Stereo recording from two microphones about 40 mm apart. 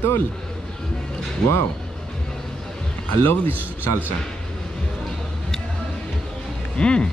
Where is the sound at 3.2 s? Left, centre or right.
Left.